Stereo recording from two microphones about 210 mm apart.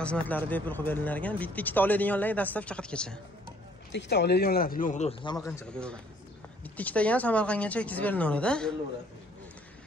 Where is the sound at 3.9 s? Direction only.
55° left (ahead or behind); by 5.2 s 35° left (ahead or behind).